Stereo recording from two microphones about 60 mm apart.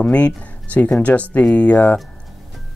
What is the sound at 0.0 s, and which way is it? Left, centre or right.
Speech, left.